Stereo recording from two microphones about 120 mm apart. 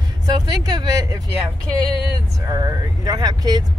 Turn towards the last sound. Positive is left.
turn(degrees=-30)  # may be behind; listen again after turning